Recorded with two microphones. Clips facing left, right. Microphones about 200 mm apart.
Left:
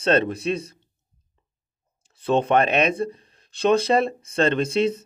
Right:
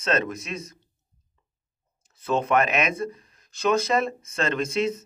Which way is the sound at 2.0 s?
30° left (ahead or behind).